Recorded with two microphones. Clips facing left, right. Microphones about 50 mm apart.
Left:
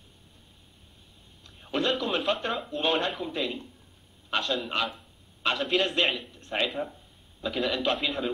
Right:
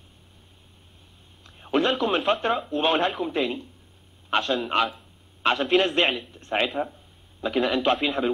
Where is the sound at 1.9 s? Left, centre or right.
Right.